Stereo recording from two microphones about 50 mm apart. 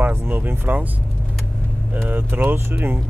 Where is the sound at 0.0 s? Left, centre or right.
Right.